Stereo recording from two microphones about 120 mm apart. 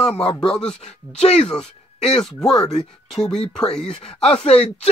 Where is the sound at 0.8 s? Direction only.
60° left (ahead or behind).